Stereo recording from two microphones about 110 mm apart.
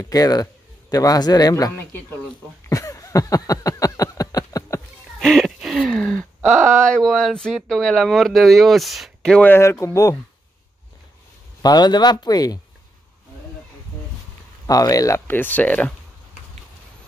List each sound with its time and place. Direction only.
0.0 s speech: 35° left (ahead or behind)
2.7 s a sound: 30° left (ahead or behind)
5.2 s a sound: centre (ahead or behind)
5.9 s gasp: 5° left (ahead or behind)
6.5 s speech: 5° left (ahead or behind)
9.4 s speech: 20° left (ahead or behind)
11.6 s speech: 40° left (ahead or behind)
14.7 s speech: 35° left (ahead or behind); by 15.9 s 15° left (ahead or behind)